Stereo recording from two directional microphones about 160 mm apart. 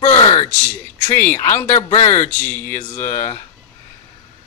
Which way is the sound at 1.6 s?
45° left (ahead or behind).